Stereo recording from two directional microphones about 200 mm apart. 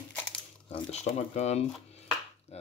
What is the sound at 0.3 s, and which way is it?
Coin, 30° left (ahead or behind).